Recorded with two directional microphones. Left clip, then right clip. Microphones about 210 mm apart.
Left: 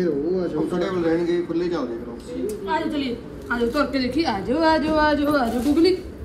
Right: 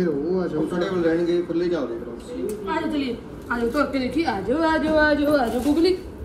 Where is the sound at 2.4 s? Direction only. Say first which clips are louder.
Left 2 dB; 5° left (ahead or behind).